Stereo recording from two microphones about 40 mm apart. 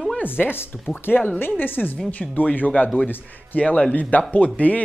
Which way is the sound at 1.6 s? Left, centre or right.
Left.